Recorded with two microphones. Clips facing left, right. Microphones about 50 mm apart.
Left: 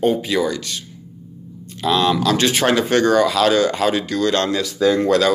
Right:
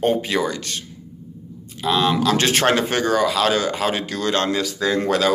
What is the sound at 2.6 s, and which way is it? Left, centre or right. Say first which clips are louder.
Speech: left 1 dB; right.